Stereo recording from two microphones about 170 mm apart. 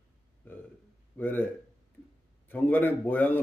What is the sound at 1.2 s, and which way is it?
Speech, 10° left (ahead or behind).